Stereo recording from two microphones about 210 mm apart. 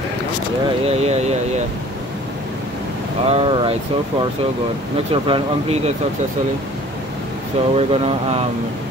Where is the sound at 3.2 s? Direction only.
25° right (ahead or behind).